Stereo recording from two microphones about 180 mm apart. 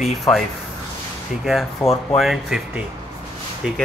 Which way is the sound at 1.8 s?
30° left (ahead or behind).